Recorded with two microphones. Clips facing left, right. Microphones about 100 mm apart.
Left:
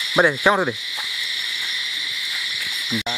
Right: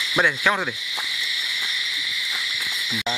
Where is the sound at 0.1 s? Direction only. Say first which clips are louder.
Left 5 dB; 20° left (ahead or behind).